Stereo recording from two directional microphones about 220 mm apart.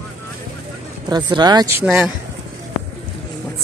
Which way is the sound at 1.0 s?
20° right (ahead or behind).